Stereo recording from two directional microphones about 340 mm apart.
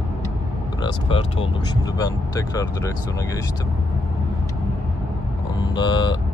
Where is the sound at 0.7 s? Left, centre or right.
Centre.